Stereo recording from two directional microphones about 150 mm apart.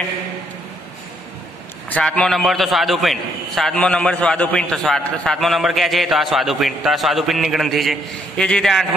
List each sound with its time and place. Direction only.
1.9 s a man's voice: 10° left (ahead or behind)